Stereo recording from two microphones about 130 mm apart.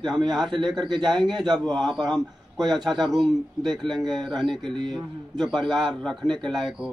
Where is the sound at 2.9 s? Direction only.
Centre (ahead or behind).